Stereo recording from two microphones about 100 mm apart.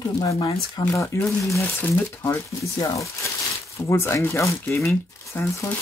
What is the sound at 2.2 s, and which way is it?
Speech, 30° left (ahead or behind).